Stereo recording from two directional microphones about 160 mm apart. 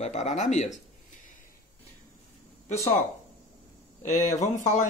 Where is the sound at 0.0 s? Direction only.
45° left (ahead or behind).